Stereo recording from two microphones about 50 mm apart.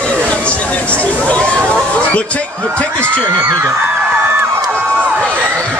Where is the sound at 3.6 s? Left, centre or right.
Right.